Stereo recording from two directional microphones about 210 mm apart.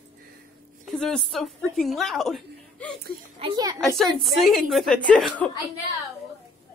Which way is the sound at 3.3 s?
20° right (ahead or behind).